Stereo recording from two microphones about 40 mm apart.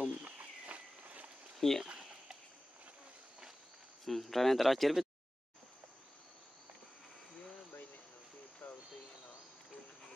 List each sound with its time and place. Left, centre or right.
0.0 s a sound: right
0.7 s walk: right
1.6 s speech: centre
2.0 s a sound: centre
4.0 s speech: centre
8.6 s cricket: left